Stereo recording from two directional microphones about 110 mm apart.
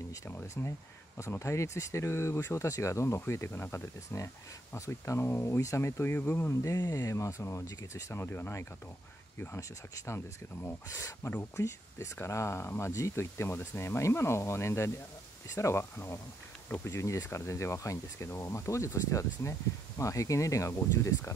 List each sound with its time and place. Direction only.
0.3 s speech: 20° left (ahead or behind)